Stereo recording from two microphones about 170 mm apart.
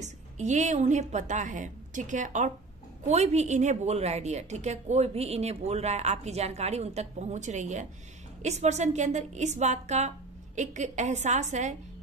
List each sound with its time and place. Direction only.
0.0 s a woman's voice: 45° right (ahead or behind)